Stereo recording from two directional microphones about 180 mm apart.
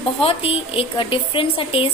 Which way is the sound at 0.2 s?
30° left (ahead or behind).